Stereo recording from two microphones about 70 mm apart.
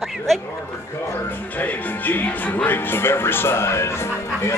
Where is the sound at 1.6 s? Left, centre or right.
Left.